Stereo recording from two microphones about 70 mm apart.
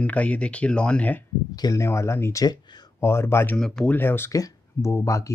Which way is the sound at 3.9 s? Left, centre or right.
Left.